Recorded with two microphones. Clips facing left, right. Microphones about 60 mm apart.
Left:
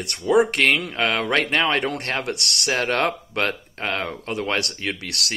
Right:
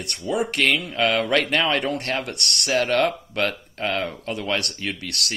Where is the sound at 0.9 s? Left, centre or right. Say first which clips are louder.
Right 1 dB; left.